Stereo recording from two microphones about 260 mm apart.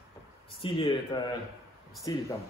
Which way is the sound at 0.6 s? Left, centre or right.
Centre.